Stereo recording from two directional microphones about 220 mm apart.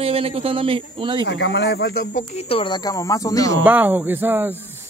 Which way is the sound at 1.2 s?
50° left (ahead or behind).